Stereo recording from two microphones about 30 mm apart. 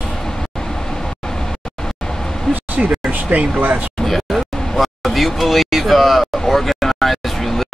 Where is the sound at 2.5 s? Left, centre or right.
Left.